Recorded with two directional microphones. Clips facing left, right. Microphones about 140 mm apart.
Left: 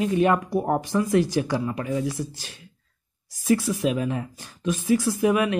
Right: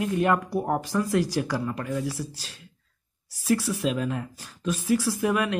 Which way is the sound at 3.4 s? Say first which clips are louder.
Left 3 dB; 20° left (ahead or behind).